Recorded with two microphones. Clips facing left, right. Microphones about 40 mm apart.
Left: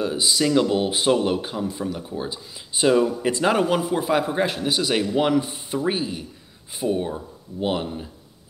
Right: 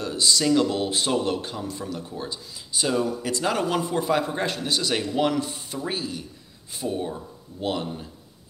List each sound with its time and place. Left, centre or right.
0.0 s speech: centre